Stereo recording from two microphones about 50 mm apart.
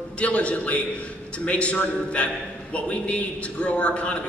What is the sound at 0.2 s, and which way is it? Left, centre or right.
A man's voice, left.